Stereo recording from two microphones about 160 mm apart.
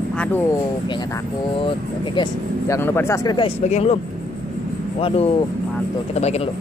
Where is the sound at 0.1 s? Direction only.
10° left (ahead or behind).